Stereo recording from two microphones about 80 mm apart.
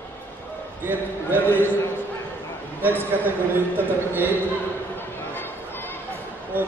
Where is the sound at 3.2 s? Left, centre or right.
Right.